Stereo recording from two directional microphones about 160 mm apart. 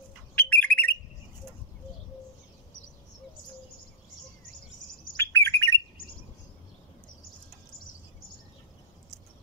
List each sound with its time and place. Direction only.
0.4 s bird: 10° left (ahead or behind)
5.1 s bird: 15° left (ahead or behind)